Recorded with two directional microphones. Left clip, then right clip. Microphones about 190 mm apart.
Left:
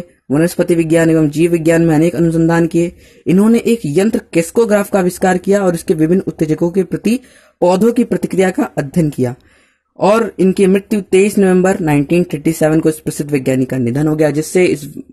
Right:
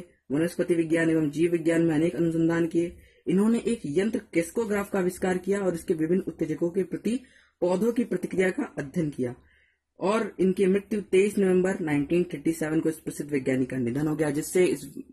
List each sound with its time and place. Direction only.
0.3 s speech: 45° left (ahead or behind)
8.2 s speech: 40° left (ahead or behind)